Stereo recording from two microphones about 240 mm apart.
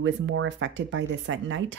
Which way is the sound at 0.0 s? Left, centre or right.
Right.